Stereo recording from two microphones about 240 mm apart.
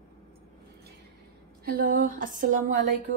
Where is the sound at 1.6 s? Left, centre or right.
Right.